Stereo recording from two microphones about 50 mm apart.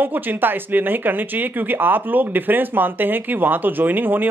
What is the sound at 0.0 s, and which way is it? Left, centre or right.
Speech, right.